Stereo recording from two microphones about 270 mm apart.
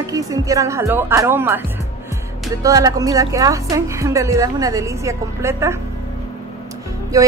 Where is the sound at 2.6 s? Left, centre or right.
Centre.